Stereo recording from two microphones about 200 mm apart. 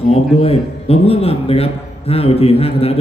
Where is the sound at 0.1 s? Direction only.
30° left (ahead or behind).